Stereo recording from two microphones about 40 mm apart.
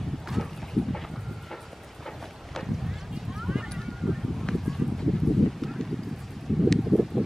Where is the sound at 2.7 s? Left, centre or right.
Centre.